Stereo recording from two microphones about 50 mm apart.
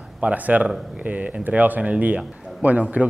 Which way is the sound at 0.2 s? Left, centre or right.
Right.